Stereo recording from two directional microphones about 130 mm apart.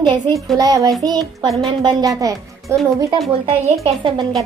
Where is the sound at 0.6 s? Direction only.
30° right (ahead or behind).